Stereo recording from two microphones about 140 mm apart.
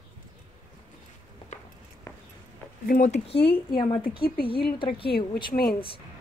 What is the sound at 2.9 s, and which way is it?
Speech, 60° left (ahead or behind).